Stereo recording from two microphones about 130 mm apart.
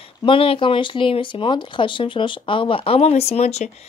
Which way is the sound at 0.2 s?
40° left (ahead or behind).